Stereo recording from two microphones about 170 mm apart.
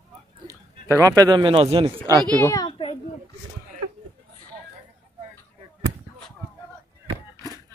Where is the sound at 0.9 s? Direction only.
20° right (ahead or behind).